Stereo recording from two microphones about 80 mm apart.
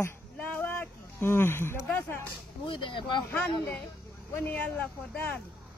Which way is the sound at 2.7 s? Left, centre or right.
Left.